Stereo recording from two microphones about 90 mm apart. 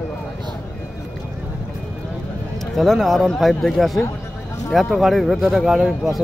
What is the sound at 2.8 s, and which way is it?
Speech, centre (ahead or behind).